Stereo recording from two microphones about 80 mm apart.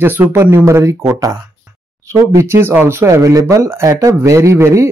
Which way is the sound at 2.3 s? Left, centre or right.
Right.